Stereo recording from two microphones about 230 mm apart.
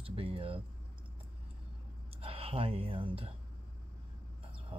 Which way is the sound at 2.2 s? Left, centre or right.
Right.